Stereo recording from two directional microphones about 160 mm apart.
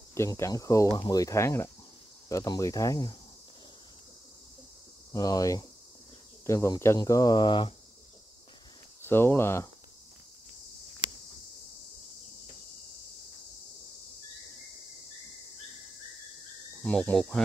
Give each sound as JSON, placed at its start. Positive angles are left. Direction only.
{"t": 0.1, "sound": "speech", "side_deg": 15}
{"t": 5.1, "sound": "speech", "side_deg": 25}
{"t": 9.0, "sound": "speech", "side_deg": 15}
{"t": 16.8, "sound": "speech", "side_deg": 5}